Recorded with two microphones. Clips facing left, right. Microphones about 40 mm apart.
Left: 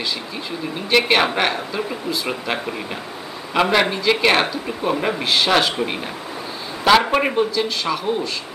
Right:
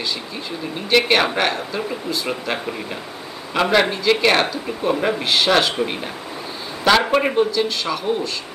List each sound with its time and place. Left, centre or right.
0.8 s speech: centre